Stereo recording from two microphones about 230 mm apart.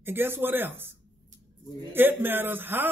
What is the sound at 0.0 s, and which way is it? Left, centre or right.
A woman's voice, centre.